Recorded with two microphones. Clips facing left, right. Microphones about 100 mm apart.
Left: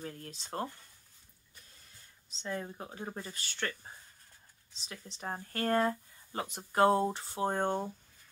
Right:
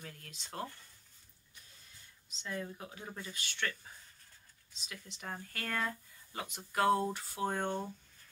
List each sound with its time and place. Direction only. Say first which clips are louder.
0.0 s speech: left 7 dB; 35° left (ahead or behind)
2.2 s speech: left 3 dB; 35° left (ahead or behind)